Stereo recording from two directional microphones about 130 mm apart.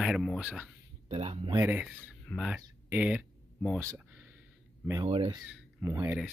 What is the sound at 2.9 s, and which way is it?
Speech, 10° right (ahead or behind).